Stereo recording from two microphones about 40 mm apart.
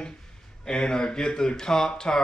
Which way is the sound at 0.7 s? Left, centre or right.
Left.